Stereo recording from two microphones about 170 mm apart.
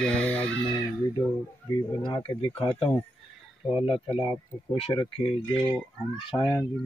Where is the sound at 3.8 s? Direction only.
30° left (ahead or behind).